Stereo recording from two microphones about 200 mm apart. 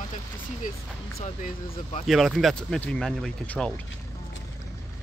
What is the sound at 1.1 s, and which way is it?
Speech, 30° left (ahead or behind).